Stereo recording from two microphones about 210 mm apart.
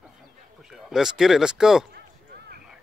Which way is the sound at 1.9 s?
50° right (ahead or behind).